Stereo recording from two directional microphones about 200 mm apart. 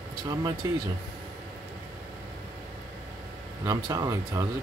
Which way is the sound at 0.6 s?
15° right (ahead or behind).